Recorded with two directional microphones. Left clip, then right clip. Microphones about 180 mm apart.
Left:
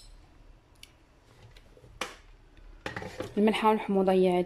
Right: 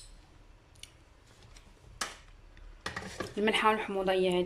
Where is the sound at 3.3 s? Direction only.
20° left (ahead or behind).